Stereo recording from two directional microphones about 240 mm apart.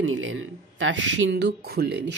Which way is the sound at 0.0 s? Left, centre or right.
Right.